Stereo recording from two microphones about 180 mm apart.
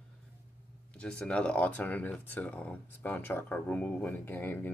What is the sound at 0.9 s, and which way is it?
Speech, 5° left (ahead or behind).